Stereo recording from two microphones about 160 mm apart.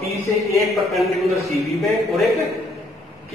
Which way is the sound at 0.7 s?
Centre (ahead or behind).